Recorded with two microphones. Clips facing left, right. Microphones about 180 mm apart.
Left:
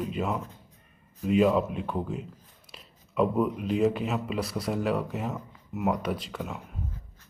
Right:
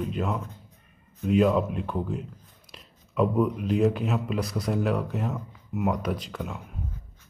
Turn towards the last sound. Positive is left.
turn(degrees=0)  # may be behind; listen again after turning